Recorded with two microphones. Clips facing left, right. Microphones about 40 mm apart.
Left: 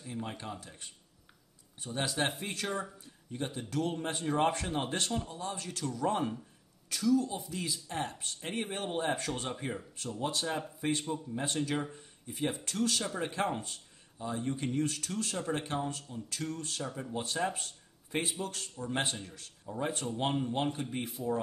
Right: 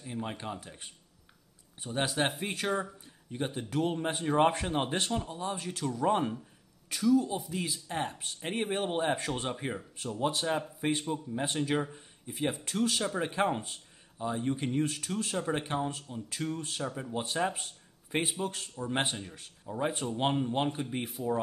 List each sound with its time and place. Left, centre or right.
0.0 s speech: centre